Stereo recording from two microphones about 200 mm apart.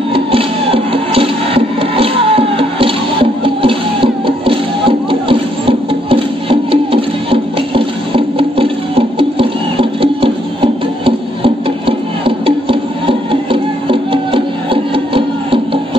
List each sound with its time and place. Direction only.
0.1 s music: 25° right (ahead or behind)